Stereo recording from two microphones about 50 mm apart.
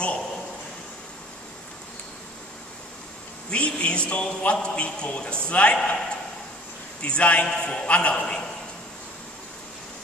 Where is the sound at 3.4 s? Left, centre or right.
Left.